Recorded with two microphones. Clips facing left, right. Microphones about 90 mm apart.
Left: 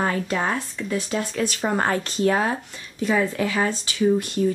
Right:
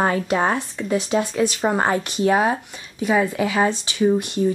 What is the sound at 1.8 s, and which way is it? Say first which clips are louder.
Speech: right 2 dB; 15° right (ahead or behind).